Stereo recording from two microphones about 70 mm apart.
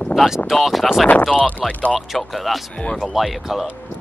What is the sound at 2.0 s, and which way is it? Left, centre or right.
Speech, centre.